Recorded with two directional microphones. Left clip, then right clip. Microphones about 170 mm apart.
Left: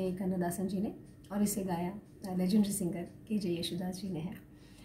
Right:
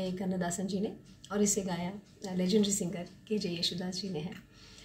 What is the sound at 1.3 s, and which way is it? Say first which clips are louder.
Speech: right 4 dB; 5° left (ahead or behind).